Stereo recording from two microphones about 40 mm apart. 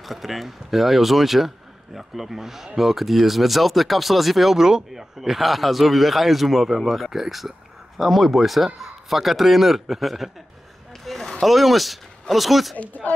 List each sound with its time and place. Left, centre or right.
0.0 s a man's voice: centre
4.6 s a man's voice: centre
11.1 s a sound: centre
11.4 s a man's voice: centre
12.7 s speech: left